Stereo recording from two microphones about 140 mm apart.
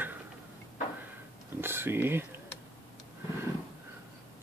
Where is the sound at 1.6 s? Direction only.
15° right (ahead or behind).